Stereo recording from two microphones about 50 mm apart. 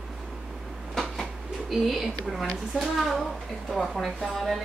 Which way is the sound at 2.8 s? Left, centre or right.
Centre.